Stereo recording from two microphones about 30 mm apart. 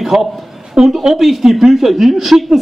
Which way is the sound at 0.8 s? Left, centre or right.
Right.